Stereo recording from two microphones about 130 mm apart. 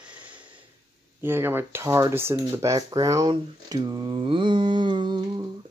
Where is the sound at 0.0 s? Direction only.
10° right (ahead or behind).